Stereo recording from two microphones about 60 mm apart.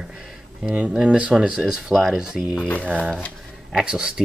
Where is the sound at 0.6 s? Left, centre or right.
Centre.